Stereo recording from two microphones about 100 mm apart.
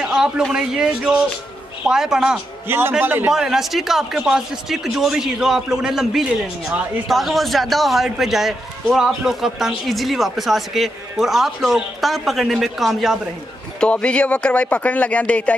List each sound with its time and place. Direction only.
0.0 s a man's voice: 5° right (ahead or behind)
3.0 s a man's voice: 20° right (ahead or behind)
3.3 s a man's voice: 5° right (ahead or behind)
13.7 s speech: 10° left (ahead or behind)